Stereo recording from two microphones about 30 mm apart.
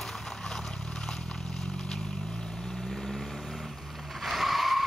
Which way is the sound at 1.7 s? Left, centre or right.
Centre.